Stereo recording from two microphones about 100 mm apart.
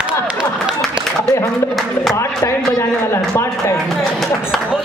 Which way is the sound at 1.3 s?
25° left (ahead or behind).